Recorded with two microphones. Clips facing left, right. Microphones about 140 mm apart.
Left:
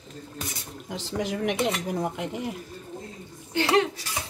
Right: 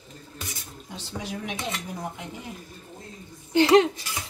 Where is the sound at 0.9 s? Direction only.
90° left.